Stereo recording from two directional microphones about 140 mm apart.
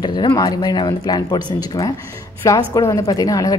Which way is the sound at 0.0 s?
30° left (ahead or behind).